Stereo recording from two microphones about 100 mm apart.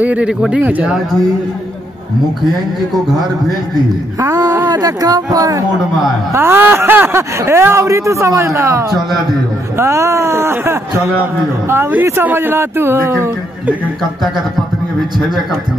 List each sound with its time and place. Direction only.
0.0 s speech: 15° right (ahead or behind)
4.2 s speech: 35° right (ahead or behind)
6.3 s speech: 20° right (ahead or behind)
15.1 s speech: centre (ahead or behind)